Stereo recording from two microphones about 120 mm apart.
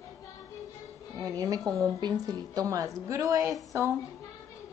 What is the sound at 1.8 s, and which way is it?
A woman's voice, 30° right (ahead or behind).